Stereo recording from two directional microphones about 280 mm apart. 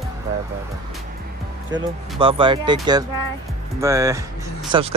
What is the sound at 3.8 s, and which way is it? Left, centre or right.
Speech, centre.